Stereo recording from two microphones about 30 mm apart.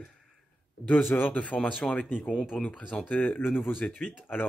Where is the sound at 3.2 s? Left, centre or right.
Left.